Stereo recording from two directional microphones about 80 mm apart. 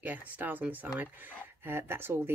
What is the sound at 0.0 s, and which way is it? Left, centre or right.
Speech, right.